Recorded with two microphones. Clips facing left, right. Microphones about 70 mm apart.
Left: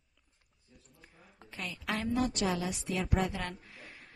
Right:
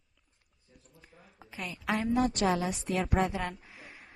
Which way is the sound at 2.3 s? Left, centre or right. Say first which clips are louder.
Right 4 dB; right.